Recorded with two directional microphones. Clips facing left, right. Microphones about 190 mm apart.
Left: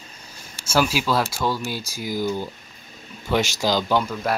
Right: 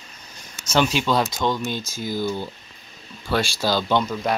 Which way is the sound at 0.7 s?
5° left (ahead or behind).